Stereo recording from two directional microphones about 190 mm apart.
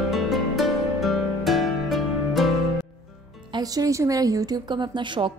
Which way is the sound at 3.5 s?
20° right (ahead or behind).